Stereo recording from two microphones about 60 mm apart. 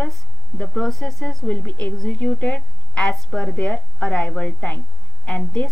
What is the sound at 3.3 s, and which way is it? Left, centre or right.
Speech, left.